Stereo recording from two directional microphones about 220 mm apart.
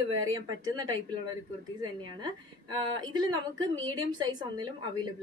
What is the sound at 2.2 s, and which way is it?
A woman's voice, 20° right (ahead or behind).